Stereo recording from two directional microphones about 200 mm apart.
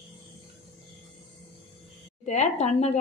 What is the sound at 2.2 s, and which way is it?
Speech, 35° left (ahead or behind).